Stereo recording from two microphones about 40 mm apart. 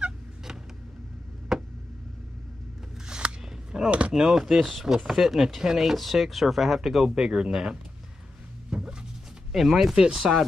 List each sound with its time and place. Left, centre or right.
1.5 s a sound: centre
3.1 s a sound: right
4.1 s speech: centre
5.8 s speech: centre
7.1 s speech: centre
9.5 s speech: centre